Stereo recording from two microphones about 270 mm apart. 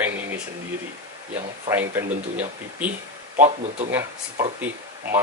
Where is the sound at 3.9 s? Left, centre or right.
Centre.